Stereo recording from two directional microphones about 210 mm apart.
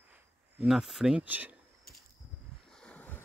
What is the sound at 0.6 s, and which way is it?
Speech, centre (ahead or behind).